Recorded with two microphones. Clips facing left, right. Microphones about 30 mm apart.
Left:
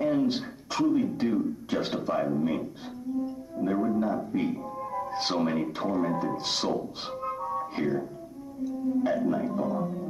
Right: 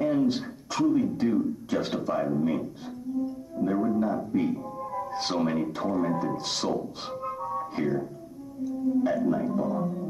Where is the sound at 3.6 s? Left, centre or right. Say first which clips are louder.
Right 1 dB; centre.